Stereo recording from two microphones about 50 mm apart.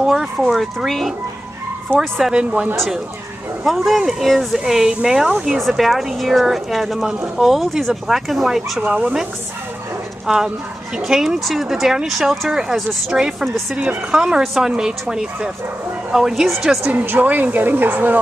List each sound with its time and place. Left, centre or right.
0.0 s speech: centre
2.3 s speech: right
3.6 s speech: centre
8.8 s speech: right
10.2 s speech: centre
12.4 s speech: centre
14.1 s speech: centre
16.8 s a woman's voice: right